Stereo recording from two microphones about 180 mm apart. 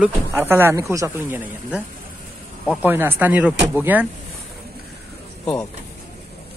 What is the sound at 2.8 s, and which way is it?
Speech, 10° right (ahead or behind).